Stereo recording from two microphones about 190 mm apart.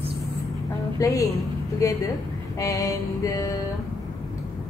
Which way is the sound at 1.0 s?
15° left (ahead or behind).